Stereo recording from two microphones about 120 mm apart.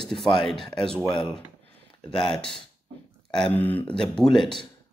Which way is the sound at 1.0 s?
45° left (ahead or behind).